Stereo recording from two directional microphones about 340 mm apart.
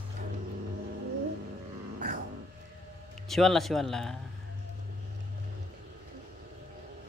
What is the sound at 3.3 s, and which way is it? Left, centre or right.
Speech, centre.